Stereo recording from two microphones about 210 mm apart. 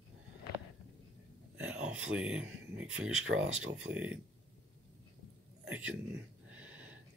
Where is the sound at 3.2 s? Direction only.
70° right (ahead or behind).